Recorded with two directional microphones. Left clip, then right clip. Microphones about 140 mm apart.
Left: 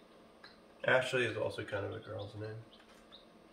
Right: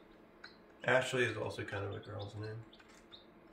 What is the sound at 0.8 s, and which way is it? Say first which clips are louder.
Speech: left 1 dB; 20° left (ahead or behind).